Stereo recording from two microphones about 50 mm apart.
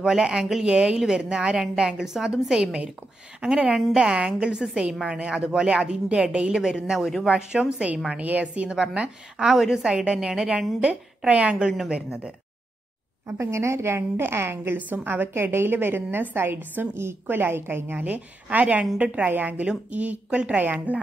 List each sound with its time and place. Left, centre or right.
0.0 s a woman's voice: centre
8.2 s a woman's voice: right
9.4 s a woman's voice: centre
13.4 s a woman's voice: right
14.8 s a woman's voice: right
16.9 s a woman's voice: right
17.3 s a woman's voice: right
17.9 s a woman's voice: right